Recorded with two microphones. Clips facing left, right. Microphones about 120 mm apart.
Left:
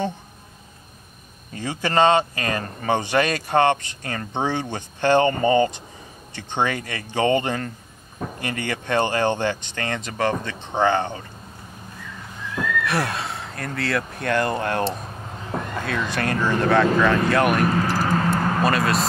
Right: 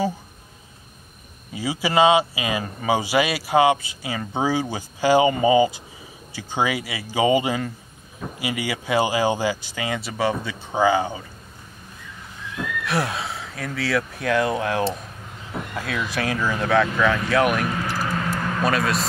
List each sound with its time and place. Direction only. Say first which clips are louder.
1.5 s speech: right 1 dB; 10° right (ahead or behind)
12.8 s speech: even; centre (ahead or behind)
17.6 s a sound: left 4 dB; 40° left (ahead or behind)
18.6 s speech: right 1 dB; centre (ahead or behind)